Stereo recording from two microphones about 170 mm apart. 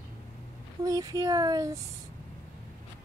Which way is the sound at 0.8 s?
20° right (ahead or behind).